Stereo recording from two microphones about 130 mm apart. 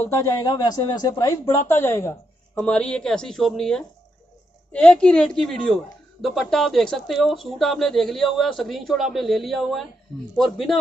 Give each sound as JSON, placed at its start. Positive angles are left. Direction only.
{"t": 0.0, "sound": "a woman's voice", "side_deg": 25}